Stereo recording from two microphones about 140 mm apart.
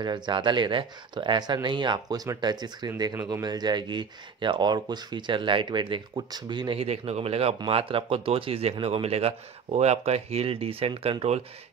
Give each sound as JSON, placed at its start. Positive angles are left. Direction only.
{"t": 0.0, "sound": "speech", "side_deg": -35}
{"t": 6.8, "sound": "speech", "side_deg": -45}